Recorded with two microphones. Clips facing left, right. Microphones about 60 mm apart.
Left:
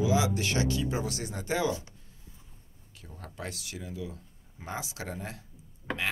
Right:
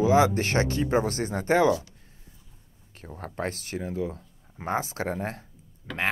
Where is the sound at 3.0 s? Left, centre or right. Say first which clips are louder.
Right 9 dB; right.